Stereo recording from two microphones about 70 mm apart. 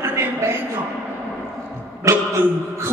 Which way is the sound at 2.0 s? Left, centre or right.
Right.